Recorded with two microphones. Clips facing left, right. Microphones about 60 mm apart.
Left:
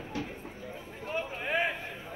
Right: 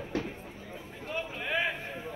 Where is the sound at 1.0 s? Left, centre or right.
Left.